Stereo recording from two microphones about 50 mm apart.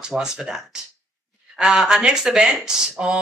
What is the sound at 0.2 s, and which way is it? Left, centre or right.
Speech, centre.